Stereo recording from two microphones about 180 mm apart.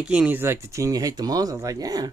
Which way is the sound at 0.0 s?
5° right (ahead or behind).